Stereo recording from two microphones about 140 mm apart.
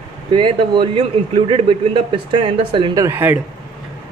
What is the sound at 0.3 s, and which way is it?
A man's voice, 35° right (ahead or behind).